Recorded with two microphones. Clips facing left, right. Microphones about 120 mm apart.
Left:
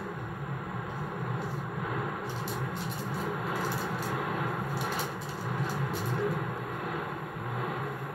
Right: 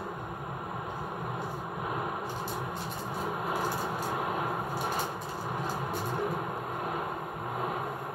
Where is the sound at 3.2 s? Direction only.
25° right (ahead or behind).